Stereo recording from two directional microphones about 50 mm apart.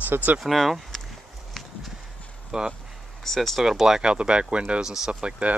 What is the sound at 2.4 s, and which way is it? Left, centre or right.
Speech, centre.